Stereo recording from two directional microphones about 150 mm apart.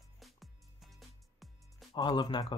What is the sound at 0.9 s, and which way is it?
Music, centre (ahead or behind).